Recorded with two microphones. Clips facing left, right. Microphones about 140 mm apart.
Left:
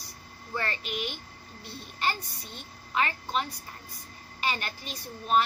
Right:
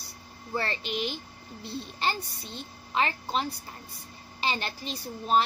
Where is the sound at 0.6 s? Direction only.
30° right (ahead or behind).